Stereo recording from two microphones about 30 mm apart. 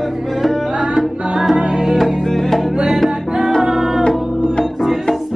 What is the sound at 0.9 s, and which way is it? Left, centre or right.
Music, centre.